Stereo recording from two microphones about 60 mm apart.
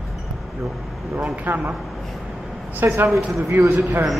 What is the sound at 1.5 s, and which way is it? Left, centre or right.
Speech, right.